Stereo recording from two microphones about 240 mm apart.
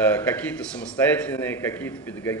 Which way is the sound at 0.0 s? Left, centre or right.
Centre.